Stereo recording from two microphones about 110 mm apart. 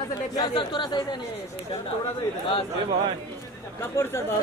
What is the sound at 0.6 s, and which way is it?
Speech, 45° left (ahead or behind).